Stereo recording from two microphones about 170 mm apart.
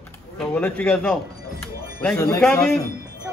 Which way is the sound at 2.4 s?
Centre (ahead or behind).